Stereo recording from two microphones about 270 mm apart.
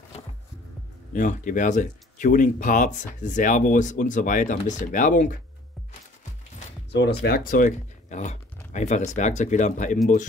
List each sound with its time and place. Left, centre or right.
1.1 s speech: left
6.9 s speech: left